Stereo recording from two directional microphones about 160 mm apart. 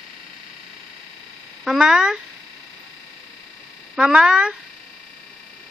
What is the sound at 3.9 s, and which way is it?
Speech, 5° right (ahead or behind).